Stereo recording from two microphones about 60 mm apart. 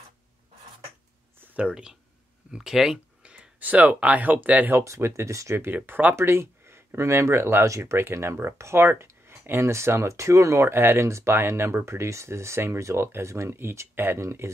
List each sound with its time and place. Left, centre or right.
1.4 s a sound: right
1.7 s speech: centre
3.2 s a sound: centre
3.5 s speech: right
4.8 s speech: right
5.7 s speech: right
6.1 s speech: right
11.1 s speech: right